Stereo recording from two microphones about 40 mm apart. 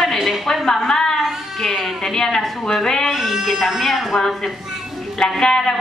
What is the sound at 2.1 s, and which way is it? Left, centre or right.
Speech, centre.